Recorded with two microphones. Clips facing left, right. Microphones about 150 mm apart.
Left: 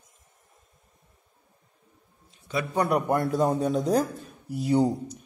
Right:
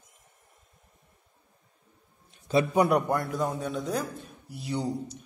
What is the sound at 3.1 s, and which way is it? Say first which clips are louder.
Speech: left 5 dB; 30° left (ahead or behind).